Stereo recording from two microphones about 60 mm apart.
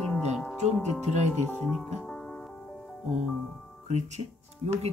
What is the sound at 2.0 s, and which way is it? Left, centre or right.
Music, centre.